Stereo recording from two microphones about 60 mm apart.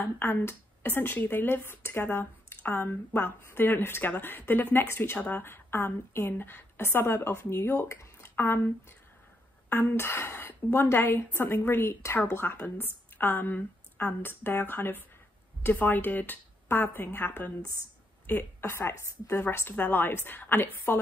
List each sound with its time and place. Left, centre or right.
0.0 s speech: left
7.7 s speech: left
9.7 s speech: left
19.7 s speech: left